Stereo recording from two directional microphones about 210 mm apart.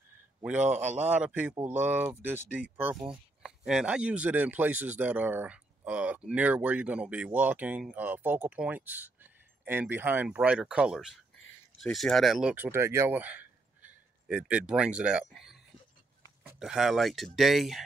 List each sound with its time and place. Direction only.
0.4 s speech: 5° right (ahead or behind)
0.7 s a man's voice: 30° right (ahead or behind)
1.0 s speech: 5° right (ahead or behind)